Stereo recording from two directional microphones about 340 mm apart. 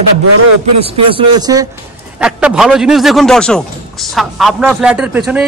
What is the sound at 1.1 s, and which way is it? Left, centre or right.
A man's voice, centre.